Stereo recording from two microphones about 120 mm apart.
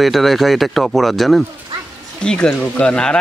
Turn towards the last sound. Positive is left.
turn(degrees=5)  # may be behind; listen again after turning